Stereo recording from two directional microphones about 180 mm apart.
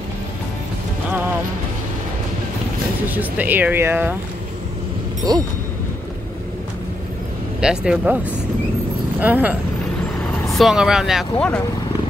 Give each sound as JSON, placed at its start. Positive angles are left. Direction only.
{"t": 3.1, "sound": "speech", "side_deg": -10}
{"t": 5.3, "sound": "a sound", "side_deg": -20}
{"t": 7.6, "sound": "speech", "side_deg": -5}
{"t": 9.2, "sound": "speech", "side_deg": -10}
{"t": 10.6, "sound": "speech", "side_deg": -5}